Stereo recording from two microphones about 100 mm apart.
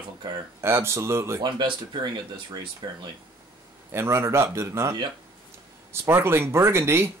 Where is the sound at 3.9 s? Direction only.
25° right (ahead or behind).